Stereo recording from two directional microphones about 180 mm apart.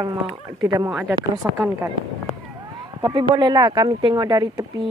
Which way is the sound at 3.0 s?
25° right (ahead or behind).